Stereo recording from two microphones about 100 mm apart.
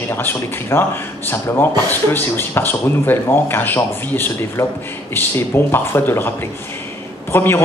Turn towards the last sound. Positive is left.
turn(degrees=25)  # may be behind; listen again after turning